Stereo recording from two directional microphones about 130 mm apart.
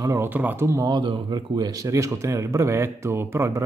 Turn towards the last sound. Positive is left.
turn(degrees=-20)  # may be behind; listen again after turning